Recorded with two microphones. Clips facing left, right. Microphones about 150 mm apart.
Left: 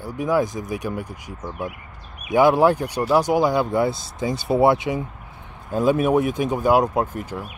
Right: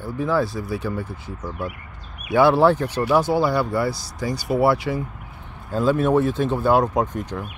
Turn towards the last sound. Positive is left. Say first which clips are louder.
# right 1 dB
turn(degrees=5)  # may be behind; listen again after turning